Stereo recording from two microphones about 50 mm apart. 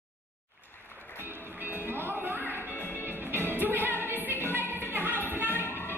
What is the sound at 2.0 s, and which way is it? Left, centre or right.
Music, right.